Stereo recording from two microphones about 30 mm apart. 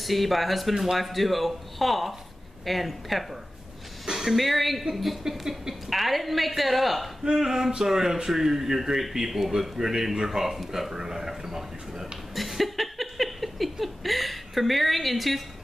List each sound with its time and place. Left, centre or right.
0.0 s speech: centre
4.0 s a sound: centre
4.4 s speech: centre
7.2 s speech: centre
10.9 s speech: centre
12.4 s a sound: centre